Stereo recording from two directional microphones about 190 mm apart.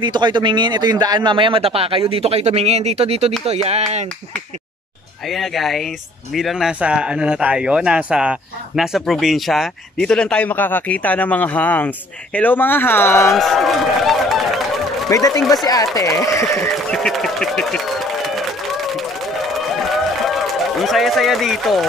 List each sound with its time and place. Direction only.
0.0 s speech: 25° right (ahead or behind)
5.3 s speech: centre (ahead or behind)
13.3 s speech: centre (ahead or behind)
15.0 s speech: 20° left (ahead or behind)
16.9 s a sound: centre (ahead or behind)
20.2 s run: centre (ahead or behind)